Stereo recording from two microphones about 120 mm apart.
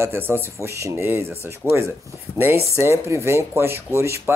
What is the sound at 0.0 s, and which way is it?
Speech, 20° right (ahead or behind).